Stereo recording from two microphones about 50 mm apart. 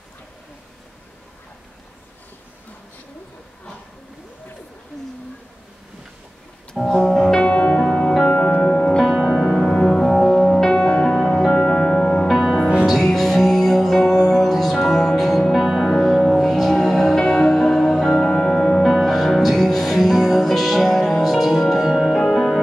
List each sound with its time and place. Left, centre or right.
7.0 s music: centre
7.8 s music: centre
9.1 s music: centre
9.5 s music: centre
12.3 s music: centre
16.0 s music: centre